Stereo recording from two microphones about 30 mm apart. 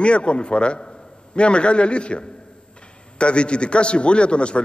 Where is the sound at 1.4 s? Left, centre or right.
Left.